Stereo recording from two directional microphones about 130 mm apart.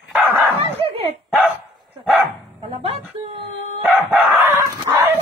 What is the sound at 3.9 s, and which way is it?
Chicken, 15° right (ahead or behind).